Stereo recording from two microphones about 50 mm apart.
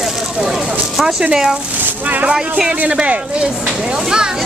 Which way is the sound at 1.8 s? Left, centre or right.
Right.